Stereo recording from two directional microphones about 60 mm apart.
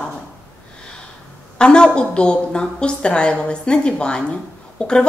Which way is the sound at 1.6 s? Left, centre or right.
Centre.